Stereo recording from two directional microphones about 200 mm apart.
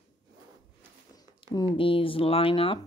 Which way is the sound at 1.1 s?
20° left (ahead or behind).